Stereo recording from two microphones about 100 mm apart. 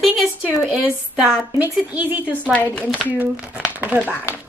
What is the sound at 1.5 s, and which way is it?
Speech, 15° right (ahead or behind).